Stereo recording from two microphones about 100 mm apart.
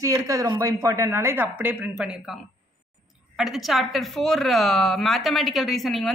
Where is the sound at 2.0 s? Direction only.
5° right (ahead or behind).